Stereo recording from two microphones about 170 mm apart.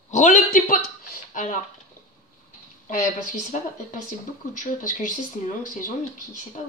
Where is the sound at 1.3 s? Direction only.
50° left (ahead or behind).